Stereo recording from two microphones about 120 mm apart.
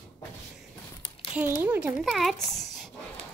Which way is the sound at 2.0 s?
Centre (ahead or behind).